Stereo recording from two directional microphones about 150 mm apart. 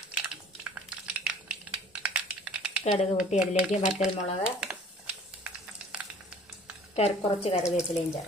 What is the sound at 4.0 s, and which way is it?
Speech, 5° right (ahead or behind).